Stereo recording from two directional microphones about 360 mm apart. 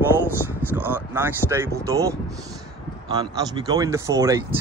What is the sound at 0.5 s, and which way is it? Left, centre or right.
Speech, centre.